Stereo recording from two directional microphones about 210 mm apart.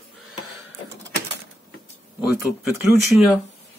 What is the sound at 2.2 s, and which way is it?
Speech, 5° right (ahead or behind).